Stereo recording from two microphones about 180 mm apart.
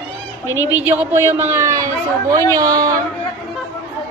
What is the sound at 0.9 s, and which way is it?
A woman's voice, 15° right (ahead or behind).